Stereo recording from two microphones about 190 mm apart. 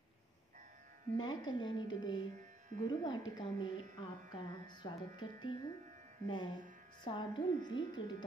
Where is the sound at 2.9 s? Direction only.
25° left (ahead or behind).